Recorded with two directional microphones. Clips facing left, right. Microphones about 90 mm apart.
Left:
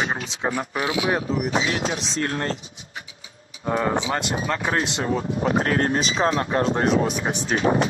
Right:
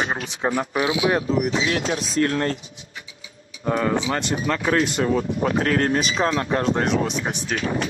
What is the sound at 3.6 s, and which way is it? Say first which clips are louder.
Speech: right 1 dB; 20° left (ahead or behind).